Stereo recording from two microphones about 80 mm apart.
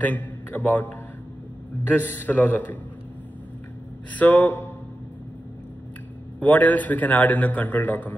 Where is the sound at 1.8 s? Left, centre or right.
Left.